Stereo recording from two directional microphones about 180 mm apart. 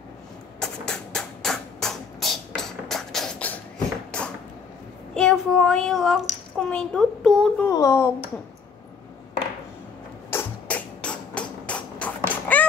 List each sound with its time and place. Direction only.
0.6 s music: 5° left (ahead or behind)
4.1 s a sound: 5° left (ahead or behind)
5.1 s a child's voice: 5° left (ahead or behind)
7.6 s speech: 15° left (ahead or behind)
10.3 s music: 5° left (ahead or behind)